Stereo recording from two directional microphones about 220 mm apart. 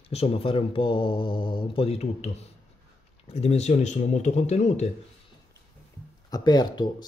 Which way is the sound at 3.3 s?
30° left (ahead or behind).